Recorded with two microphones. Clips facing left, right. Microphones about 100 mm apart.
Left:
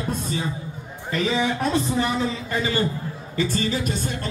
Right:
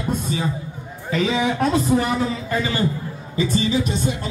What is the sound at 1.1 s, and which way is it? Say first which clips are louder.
A man's voice: right 2 dB; centre (ahead or behind).